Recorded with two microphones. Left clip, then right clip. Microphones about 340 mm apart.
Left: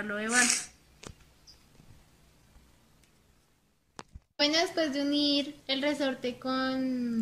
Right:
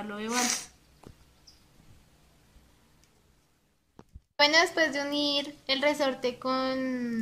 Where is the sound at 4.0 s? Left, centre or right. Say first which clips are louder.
Left 9 dB; left.